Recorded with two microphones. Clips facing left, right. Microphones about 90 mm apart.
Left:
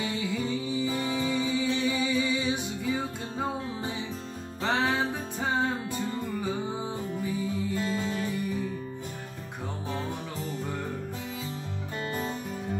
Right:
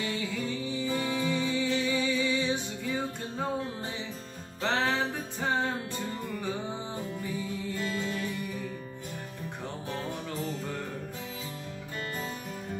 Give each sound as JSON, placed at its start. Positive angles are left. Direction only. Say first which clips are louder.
{"t": 0.0, "sound": "music", "louder": "left 2 dB", "side_deg": 15}
{"t": 4.6, "sound": "music", "louder": "left 1 dB", "side_deg": 10}
{"t": 7.9, "sound": "music", "louder": "left 3 dB", "side_deg": 25}